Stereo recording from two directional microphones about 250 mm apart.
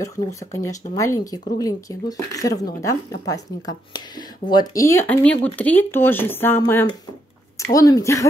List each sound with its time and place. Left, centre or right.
0.0 s speech: centre